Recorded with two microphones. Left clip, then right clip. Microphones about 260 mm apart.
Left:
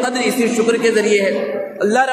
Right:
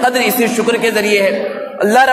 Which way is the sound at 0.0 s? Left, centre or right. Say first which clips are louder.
Right 4 dB; right.